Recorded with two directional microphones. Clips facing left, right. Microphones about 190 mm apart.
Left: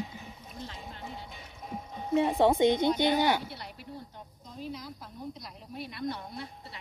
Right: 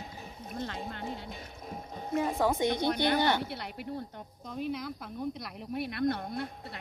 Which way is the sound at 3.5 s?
60° right (ahead or behind).